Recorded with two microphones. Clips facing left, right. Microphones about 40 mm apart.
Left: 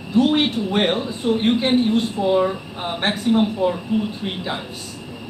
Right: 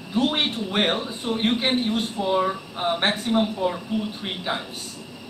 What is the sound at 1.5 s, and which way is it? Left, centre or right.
Speech, centre.